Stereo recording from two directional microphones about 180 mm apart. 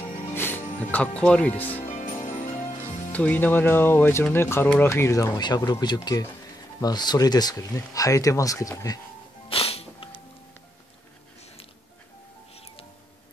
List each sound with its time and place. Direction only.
0.3 s music: 10° left (ahead or behind)
0.9 s speech: 5° left (ahead or behind)
1.9 s music: 45° left (ahead or behind)
3.1 s speech: 10° left (ahead or behind)
9.5 s music: 30° left (ahead or behind)
12.5 s music: 35° left (ahead or behind)